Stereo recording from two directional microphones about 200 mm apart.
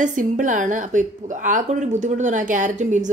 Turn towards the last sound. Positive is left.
turn(degrees=-40)  # may be behind; listen again after turning